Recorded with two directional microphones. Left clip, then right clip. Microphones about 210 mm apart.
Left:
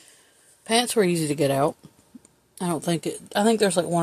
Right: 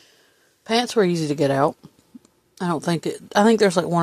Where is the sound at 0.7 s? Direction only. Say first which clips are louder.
Right 2 dB; 15° right (ahead or behind); by 4.0 s 35° right (ahead or behind).